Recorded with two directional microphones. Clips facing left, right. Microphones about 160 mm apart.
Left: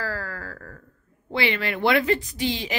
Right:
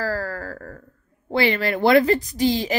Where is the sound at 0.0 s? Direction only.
40° right (ahead or behind).